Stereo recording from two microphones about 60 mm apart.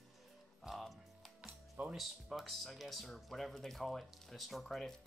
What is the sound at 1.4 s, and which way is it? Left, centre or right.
Music, centre.